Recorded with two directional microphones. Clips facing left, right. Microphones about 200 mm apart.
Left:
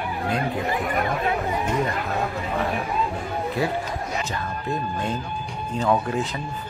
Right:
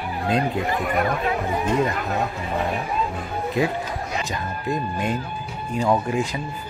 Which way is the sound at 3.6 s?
15° right (ahead or behind).